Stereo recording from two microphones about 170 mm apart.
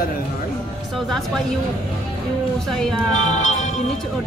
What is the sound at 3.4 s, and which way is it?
Music, 45° left (ahead or behind).